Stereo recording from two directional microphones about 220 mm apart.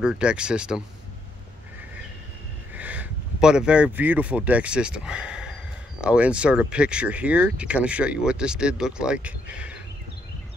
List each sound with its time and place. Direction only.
0.0 s speech: 5° right (ahead or behind)
2.7 s speech: 5° right (ahead or behind)